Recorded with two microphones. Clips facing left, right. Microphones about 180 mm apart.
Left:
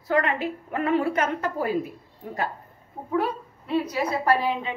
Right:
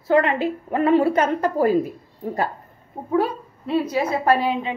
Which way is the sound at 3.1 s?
30° right (ahead or behind).